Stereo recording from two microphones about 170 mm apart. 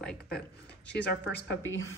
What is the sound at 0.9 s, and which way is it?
Speech, 80° left.